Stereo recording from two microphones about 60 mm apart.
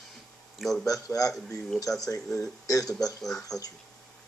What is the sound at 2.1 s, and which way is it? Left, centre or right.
Speech, left.